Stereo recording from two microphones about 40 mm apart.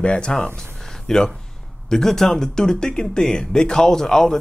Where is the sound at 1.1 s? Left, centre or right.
Centre.